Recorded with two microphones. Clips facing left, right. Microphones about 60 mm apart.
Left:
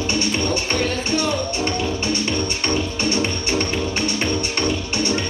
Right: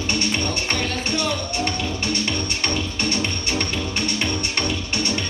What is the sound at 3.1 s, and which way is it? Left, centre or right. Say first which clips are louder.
Music: left 3 dB; left.